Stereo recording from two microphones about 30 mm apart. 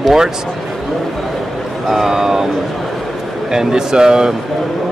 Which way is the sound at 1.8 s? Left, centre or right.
Centre.